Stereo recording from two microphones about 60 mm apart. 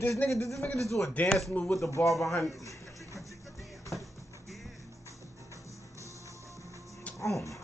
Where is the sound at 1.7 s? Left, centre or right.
Left.